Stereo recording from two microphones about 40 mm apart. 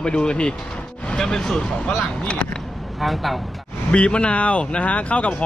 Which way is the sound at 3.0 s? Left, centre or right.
Centre.